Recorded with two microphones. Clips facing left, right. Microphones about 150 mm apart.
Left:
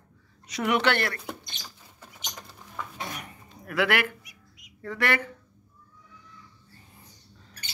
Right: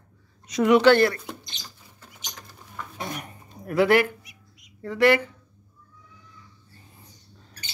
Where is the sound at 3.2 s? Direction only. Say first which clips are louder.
Right 6 dB; 40° right (ahead or behind).